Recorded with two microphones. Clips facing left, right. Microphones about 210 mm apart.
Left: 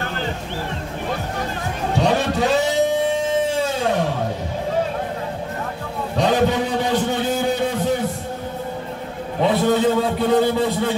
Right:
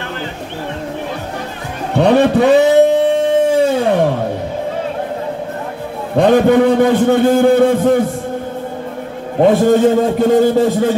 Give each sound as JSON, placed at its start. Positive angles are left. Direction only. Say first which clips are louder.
{"t": 2.0, "sound": "a sound", "louder": "right 10 dB", "side_deg": -60}
{"t": 6.1, "sound": "a man's voice", "louder": "right 9 dB", "side_deg": -55}
{"t": 9.4, "sound": "a man's voice", "louder": "right 7 dB", "side_deg": -45}